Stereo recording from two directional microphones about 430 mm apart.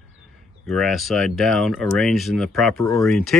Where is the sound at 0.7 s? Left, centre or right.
Centre.